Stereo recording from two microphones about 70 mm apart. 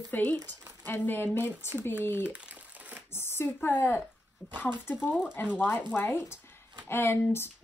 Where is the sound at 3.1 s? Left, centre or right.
Left.